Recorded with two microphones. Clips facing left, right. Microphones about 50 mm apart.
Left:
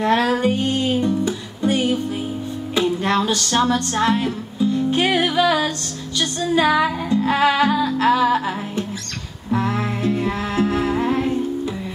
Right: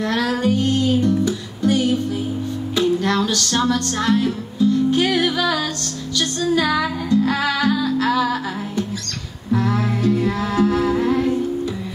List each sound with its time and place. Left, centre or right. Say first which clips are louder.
0.0 s music: left 2 dB; left